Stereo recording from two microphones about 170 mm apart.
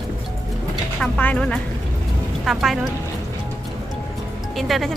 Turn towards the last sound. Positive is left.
turn(degrees=0)  # may be behind; listen again after turning